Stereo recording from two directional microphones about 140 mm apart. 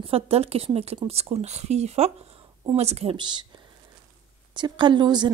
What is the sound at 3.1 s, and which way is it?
Speech, 35° right (ahead or behind).